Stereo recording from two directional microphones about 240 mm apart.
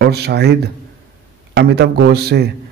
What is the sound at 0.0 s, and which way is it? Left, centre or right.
A man's voice, right.